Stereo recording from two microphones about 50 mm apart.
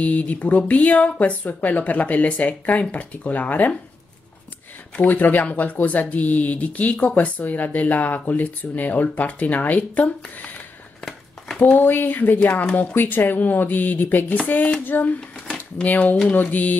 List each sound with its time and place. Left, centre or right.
0.0 s speech: left
5.0 s speech: left
11.7 s speech: left
15.1 s speech: left